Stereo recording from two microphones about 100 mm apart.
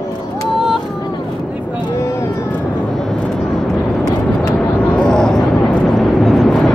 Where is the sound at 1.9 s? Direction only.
30° left (ahead or behind).